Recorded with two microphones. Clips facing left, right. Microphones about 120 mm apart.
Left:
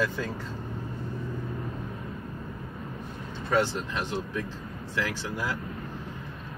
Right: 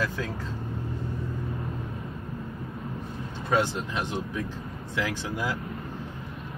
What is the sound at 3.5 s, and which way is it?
Speech, 15° right (ahead or behind).